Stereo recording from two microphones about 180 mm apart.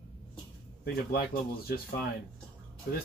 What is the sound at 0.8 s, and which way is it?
Speech, 60° left (ahead or behind).